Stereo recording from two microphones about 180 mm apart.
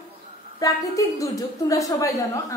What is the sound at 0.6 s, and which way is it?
A woman's voice, 20° left (ahead or behind).